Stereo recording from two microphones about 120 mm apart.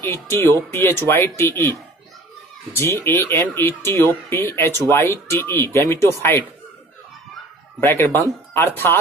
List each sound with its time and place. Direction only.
0.0 s speech: 20° left (ahead or behind)
7.8 s speech: 15° left (ahead or behind)